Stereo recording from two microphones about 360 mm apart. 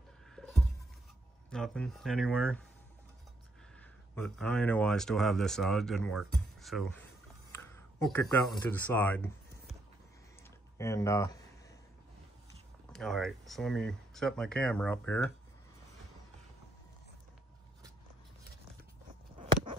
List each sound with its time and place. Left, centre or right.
0.4 s a sound: centre
1.5 s speech: centre
3.8 s speech: centre
10.8 s speech: centre
12.9 s speech: centre